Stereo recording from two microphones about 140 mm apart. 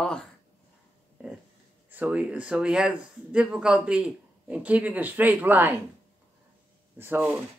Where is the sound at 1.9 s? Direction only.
10° right (ahead or behind).